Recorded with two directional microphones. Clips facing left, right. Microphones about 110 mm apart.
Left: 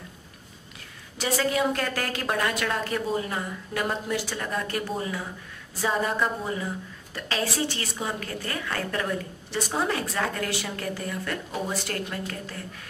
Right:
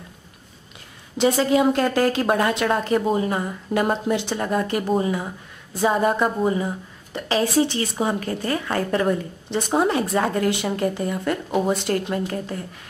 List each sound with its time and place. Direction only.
1.1 s speech: 25° right (ahead or behind)
7.2 s a sound: 20° right (ahead or behind)
7.8 s speech: 35° right (ahead or behind)